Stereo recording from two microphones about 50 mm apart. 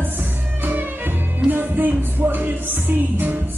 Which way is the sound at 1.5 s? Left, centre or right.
Right.